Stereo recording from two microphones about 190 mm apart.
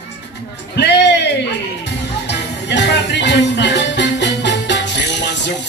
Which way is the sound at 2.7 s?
65° left (ahead or behind).